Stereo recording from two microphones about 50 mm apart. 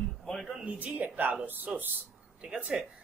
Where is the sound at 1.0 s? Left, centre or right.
Right.